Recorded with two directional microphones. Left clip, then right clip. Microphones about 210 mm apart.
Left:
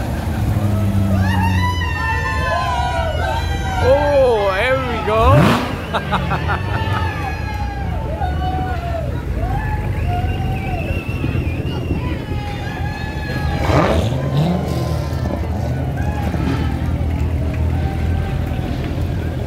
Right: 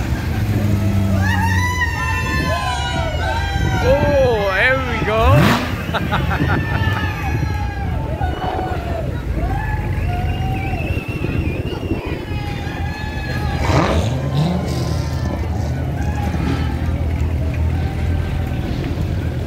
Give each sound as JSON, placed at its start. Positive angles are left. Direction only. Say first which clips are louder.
{"t": 3.8, "sound": "vehicle", "louder": "left 2 dB", "side_deg": 0}
{"t": 13.7, "sound": "vehicle", "louder": "left 2 dB", "side_deg": 50}